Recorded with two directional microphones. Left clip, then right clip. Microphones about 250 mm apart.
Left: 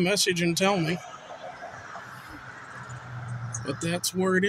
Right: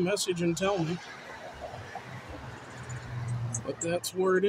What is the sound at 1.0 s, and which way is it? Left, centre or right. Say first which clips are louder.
Snicker: left 2 dB; right.